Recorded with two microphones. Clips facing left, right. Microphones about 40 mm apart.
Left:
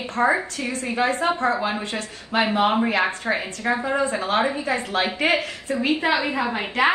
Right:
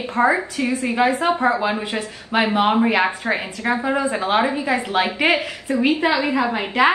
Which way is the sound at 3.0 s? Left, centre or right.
Right.